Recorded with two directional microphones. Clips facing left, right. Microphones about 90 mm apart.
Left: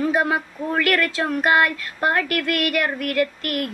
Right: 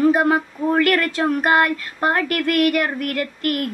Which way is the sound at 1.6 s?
35° right (ahead or behind).